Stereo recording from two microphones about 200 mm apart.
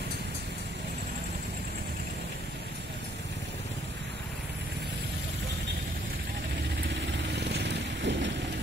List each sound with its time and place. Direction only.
7.1 s vehicle: 60° right (ahead or behind)